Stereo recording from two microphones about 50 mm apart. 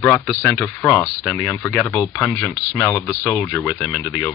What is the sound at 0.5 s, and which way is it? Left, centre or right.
Speech, left.